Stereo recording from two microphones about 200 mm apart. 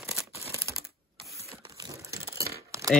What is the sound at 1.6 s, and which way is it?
Crumpling, 20° right (ahead or behind).